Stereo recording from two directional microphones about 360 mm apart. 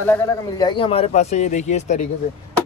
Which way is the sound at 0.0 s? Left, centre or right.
Centre.